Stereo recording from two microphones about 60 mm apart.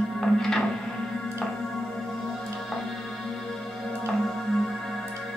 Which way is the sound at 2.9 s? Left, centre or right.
Centre.